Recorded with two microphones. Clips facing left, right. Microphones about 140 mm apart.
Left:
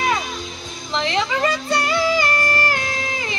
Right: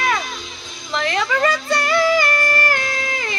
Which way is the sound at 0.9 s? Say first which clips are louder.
Right 1 dB; 20° left (ahead or behind).